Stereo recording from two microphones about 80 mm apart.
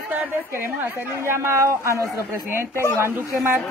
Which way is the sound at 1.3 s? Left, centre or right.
Right.